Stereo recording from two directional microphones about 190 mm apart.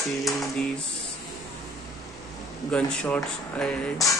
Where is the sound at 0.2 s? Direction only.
Centre (ahead or behind).